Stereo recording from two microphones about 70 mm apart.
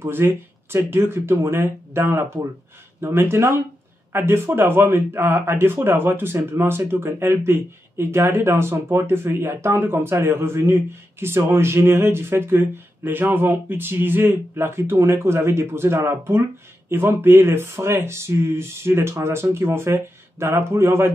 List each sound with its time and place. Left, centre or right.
0.0 s speech: right